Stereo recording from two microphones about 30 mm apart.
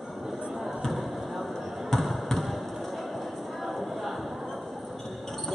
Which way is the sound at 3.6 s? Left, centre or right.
Centre.